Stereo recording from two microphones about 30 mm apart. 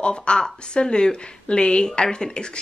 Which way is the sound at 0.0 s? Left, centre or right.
Left.